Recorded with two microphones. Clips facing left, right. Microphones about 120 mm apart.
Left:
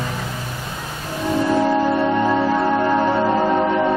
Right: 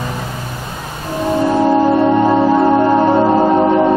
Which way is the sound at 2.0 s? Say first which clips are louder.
Right 6 dB; 25° right (ahead or behind).